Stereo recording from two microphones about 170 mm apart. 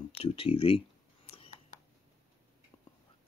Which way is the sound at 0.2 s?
35° left (ahead or behind).